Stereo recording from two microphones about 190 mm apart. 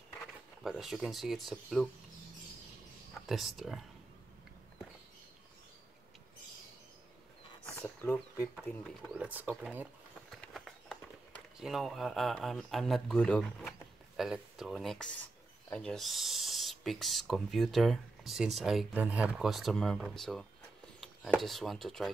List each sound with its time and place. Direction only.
0.7 s speech: centre (ahead or behind)
3.3 s speech: centre (ahead or behind)
7.6 s a sound: 10° left (ahead or behind)
9.1 s speech: 10° right (ahead or behind)
10.3 s run: centre (ahead or behind)
11.6 s speech: centre (ahead or behind)